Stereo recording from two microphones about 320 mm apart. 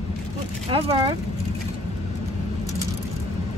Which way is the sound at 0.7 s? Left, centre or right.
Centre.